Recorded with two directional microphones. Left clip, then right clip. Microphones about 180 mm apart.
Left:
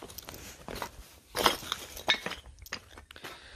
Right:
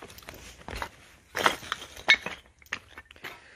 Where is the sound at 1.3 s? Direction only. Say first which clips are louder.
Right 2 dB; 25° left (ahead or behind).